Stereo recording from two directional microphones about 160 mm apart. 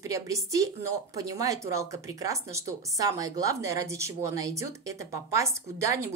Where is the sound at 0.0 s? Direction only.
20° right (ahead or behind).